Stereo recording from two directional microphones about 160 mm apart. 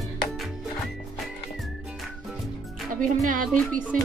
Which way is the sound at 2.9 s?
55° right (ahead or behind).